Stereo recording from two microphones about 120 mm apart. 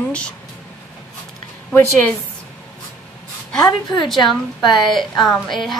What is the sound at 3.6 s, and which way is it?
Speech, 40° left (ahead or behind).